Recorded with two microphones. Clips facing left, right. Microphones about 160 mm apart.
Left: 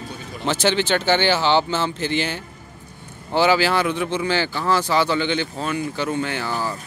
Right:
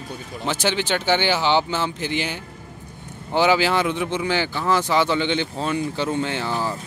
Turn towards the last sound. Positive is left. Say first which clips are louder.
# even
turn(degrees=-25)  # may be behind; listen again after turning